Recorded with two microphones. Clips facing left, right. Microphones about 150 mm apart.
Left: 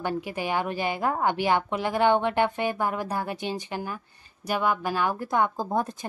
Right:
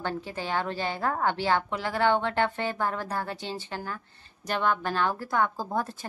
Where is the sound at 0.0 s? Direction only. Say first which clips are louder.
Left 3 dB; 15° left (ahead or behind).